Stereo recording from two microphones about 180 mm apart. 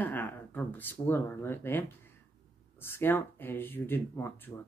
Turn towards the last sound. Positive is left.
turn(degrees=10)  # may be behind; listen again after turning